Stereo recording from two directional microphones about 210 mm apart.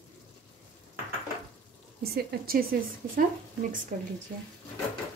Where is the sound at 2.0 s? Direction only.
45° right (ahead or behind).